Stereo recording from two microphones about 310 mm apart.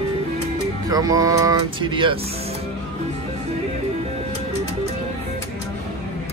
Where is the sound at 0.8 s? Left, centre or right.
Centre.